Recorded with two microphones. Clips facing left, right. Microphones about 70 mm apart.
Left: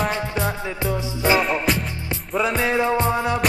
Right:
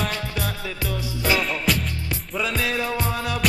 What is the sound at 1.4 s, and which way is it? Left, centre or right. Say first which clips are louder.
Music: left 3 dB; centre.